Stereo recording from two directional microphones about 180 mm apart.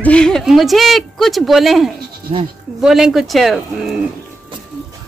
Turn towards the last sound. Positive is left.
turn(degrees=0)  # may be behind; listen again after turning